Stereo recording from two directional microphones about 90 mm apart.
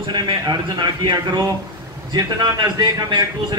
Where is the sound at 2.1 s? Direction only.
55° right (ahead or behind).